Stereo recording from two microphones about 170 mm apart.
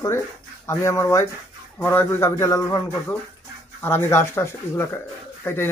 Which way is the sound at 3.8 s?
15° left (ahead or behind).